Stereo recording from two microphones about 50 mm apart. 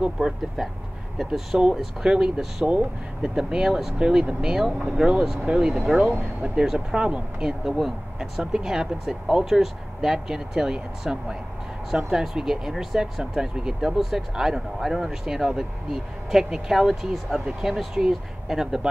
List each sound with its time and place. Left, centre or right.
0.6 s speech: centre
2.0 s speech: centre
7.6 s speech: centre